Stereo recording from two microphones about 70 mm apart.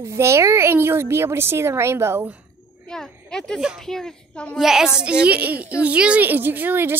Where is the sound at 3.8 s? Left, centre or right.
Centre.